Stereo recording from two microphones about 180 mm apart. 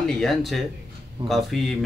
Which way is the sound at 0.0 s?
5° left (ahead or behind).